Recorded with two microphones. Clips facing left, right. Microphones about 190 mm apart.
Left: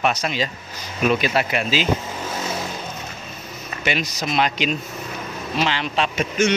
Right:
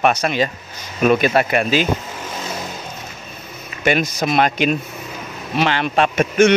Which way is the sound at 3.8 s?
50° right (ahead or behind).